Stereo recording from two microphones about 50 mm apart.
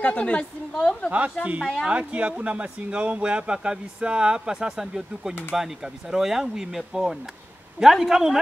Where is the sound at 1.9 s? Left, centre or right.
Right.